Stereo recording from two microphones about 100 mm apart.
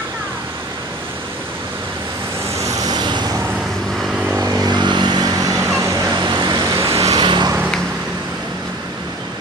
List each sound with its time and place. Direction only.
2.5 s vehicle: 35° right (ahead or behind)
4.0 s vehicle: 5° right (ahead or behind)
4.4 s vehicle: 35° right (ahead or behind)
6.1 s vehicle: 45° right (ahead or behind)
6.6 s vehicle: 30° right (ahead or behind)
7.2 s vehicle: 50° right (ahead or behind)